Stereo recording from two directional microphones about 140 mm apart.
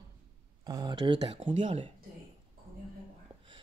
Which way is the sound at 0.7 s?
30° right (ahead or behind).